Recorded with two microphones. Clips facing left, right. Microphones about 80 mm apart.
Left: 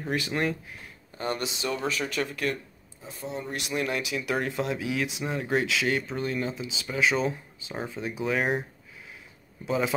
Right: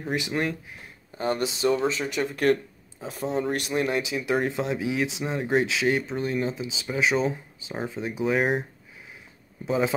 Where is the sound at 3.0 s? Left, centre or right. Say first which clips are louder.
Right 8 dB; right.